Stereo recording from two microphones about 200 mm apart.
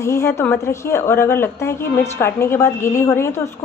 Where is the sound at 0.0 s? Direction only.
15° left (ahead or behind).